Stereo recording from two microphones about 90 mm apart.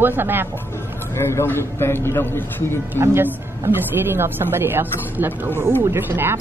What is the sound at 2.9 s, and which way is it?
Speech, 25° right (ahead or behind).